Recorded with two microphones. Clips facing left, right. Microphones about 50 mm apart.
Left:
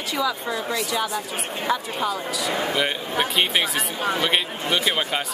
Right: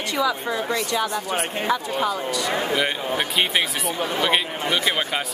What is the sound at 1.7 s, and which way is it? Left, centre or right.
A woman's voice, centre.